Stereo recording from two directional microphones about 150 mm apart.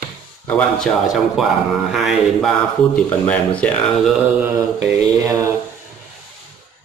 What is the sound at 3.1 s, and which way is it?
Speech, 10° left (ahead or behind).